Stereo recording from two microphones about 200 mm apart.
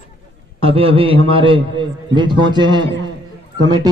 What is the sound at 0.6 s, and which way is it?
A man's voice, 30° right (ahead or behind).